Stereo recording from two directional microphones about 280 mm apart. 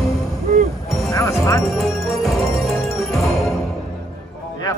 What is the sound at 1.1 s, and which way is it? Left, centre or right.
Music, centre.